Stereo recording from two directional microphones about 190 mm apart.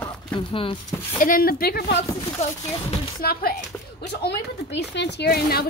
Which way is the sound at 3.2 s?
55° left (ahead or behind).